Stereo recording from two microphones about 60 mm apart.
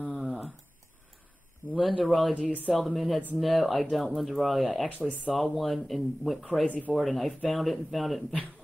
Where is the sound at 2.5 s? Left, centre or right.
Right.